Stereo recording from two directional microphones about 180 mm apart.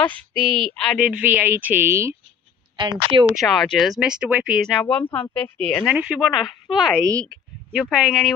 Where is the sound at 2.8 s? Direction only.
25° right (ahead or behind).